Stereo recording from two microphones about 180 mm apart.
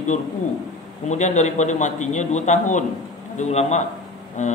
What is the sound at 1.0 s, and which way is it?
A man's voice, 40° left (ahead or behind).